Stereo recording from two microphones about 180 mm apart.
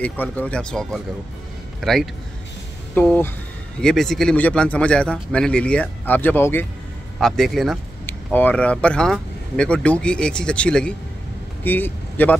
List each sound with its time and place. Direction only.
0.0 s speech: 10° left (ahead or behind)